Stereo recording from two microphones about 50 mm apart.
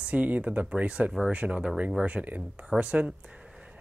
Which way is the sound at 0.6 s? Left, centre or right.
Right.